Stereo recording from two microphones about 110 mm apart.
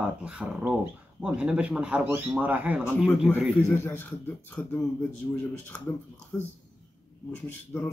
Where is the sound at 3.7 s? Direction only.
20° left (ahead or behind).